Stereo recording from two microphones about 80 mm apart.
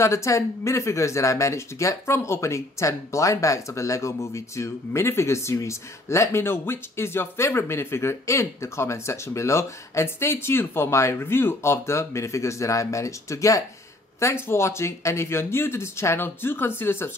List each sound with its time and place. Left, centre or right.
0.0 s speech: left